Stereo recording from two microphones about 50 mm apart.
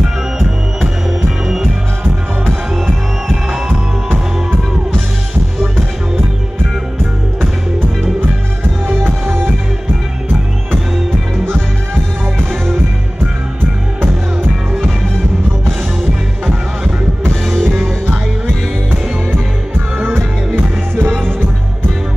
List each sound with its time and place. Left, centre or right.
8.8 s music: right
20.5 s music: right